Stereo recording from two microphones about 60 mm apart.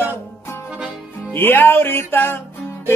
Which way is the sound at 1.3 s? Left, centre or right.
Left.